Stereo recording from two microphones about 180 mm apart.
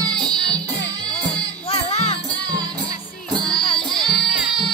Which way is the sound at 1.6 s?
30° left (ahead or behind).